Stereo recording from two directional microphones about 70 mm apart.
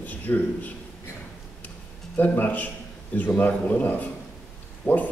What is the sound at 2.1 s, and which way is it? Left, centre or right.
A man's voice, left.